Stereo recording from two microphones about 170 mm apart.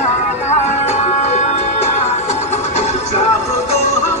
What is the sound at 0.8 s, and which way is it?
Music, 40° left (ahead or behind).